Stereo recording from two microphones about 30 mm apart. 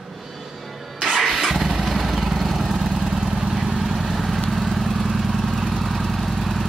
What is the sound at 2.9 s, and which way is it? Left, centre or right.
Vehicle, right.